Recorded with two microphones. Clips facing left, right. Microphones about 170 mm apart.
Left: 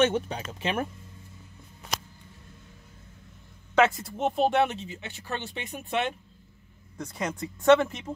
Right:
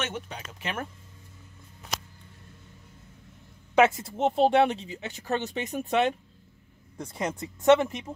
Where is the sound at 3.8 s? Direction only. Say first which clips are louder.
Right 2 dB; 20° right (ahead or behind); by 6.1 s 40° right (ahead or behind).